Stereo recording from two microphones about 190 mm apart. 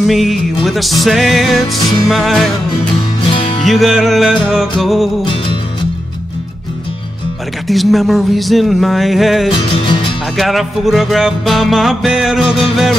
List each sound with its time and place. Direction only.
0.0 s music: centre (ahead or behind)
3.6 s music: centre (ahead or behind)
5.2 s music: 25° left (ahead or behind)
7.6 s music: centre (ahead or behind)
9.5 s music: 25° left (ahead or behind)
10.3 s music: centre (ahead or behind)